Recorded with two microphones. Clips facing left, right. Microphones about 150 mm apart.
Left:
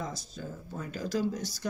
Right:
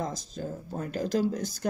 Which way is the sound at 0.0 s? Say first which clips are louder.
Right 5 dB; 45° right (ahead or behind).